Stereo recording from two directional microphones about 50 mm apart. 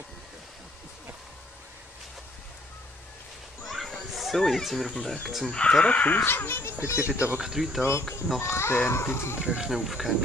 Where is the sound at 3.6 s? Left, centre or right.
Centre.